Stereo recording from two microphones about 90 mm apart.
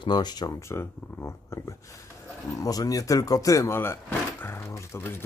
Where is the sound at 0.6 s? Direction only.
30° left (ahead or behind).